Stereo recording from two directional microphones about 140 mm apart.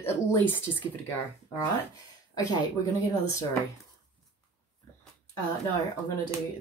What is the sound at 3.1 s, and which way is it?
Speech, 20° left (ahead or behind).